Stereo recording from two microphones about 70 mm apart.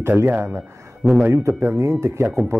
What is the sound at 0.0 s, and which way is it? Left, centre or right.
Speech, right.